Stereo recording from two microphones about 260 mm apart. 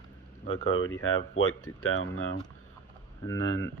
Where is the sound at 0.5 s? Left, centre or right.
Left.